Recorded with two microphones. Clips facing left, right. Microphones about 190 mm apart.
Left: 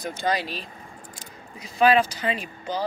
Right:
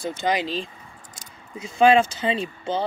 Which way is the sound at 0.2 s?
20° right (ahead or behind).